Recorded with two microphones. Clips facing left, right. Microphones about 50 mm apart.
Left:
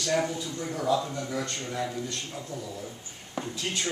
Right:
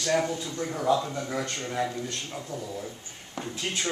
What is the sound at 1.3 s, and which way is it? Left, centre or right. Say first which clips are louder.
Speech: right 1 dB; right.